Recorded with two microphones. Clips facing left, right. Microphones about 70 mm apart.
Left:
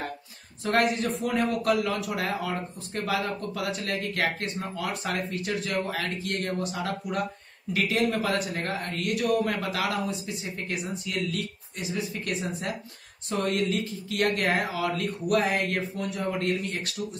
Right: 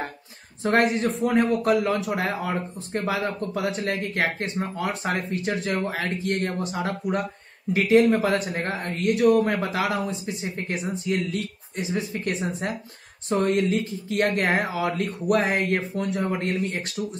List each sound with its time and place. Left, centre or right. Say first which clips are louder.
0.7 s a man's voice: right 3 dB; right